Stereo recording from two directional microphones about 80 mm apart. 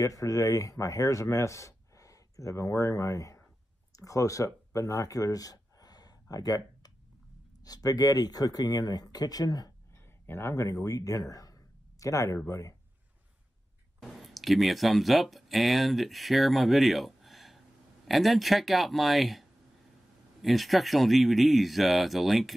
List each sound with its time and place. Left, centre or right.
0.0 s speech: left
4.5 s a sound: left
7.6 s speech: left
10.2 s speech: left
14.0 s speech: centre
20.4 s speech: centre